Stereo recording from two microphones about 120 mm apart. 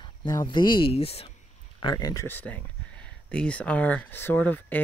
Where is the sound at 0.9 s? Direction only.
55° left (ahead or behind).